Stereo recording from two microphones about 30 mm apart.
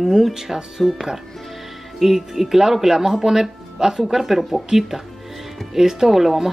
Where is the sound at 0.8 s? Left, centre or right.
Centre.